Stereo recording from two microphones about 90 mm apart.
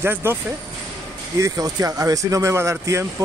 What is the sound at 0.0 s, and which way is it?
Speech, 25° right (ahead or behind).